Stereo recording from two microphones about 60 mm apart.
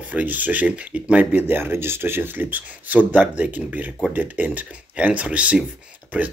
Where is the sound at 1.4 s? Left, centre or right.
Right.